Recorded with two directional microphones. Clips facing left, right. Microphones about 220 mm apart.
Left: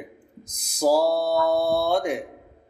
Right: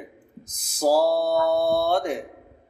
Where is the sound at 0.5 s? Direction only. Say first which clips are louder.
Even; 10° left (ahead or behind).